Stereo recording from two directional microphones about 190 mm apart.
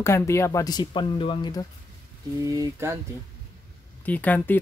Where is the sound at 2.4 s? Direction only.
15° right (ahead or behind).